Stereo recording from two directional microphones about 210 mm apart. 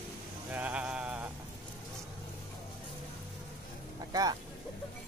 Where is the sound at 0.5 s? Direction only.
5° right (ahead or behind).